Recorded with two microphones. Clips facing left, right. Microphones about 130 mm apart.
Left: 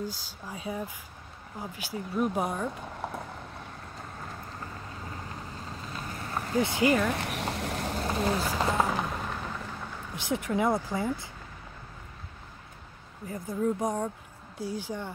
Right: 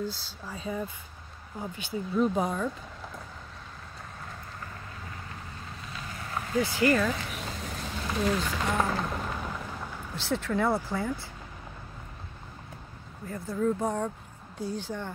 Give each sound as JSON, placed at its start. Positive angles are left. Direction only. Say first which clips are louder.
{"t": 0.0, "sound": "speech", "louder": "right 2 dB", "side_deg": 10}
{"t": 3.0, "sound": "vehicle", "louder": "left 8 dB", "side_deg": 65}
{"t": 6.5, "sound": "speech", "louder": "even", "side_deg": 20}
{"t": 7.1, "sound": "vehicle", "louder": "left 2 dB", "side_deg": 70}
{"t": 8.1, "sound": "speech", "louder": "right 1 dB", "side_deg": 30}
{"t": 9.0, "sound": "a sound", "louder": "right 1 dB", "side_deg": 0}
{"t": 10.1, "sound": "speech", "louder": "even", "side_deg": 15}
{"t": 13.3, "sound": "speech", "louder": "right 1 dB", "side_deg": 20}